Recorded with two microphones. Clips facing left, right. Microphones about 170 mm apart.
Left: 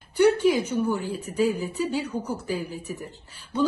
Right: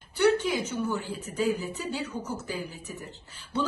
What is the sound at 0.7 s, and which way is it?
Speech, 10° left (ahead or behind).